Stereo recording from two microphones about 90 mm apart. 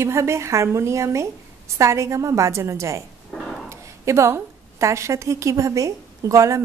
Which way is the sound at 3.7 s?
35° right (ahead or behind).